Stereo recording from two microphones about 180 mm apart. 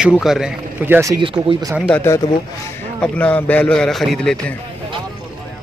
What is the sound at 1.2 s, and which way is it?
Speech, 30° right (ahead or behind).